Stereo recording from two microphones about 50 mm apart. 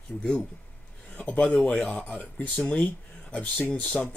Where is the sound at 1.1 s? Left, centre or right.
Left.